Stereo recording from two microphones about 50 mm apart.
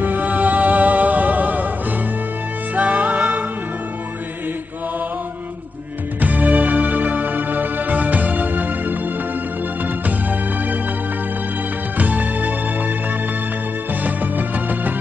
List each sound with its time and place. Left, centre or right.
0.0 s music: right
2.7 s music: right
6.2 s music: right
12.0 s music: right
14.0 s music: right